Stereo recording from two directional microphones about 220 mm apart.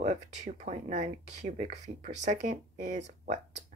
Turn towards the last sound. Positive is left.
turn(degrees=-30)  # may be behind; listen again after turning